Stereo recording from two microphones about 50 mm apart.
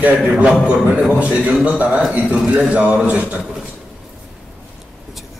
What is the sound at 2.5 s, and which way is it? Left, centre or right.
Speech, right.